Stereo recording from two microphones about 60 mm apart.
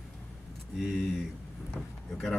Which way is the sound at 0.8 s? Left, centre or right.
Centre.